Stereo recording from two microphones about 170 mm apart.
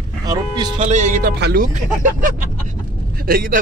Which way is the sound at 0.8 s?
45° right (ahead or behind).